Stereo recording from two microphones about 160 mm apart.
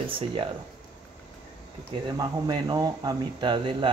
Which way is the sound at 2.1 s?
25° right (ahead or behind).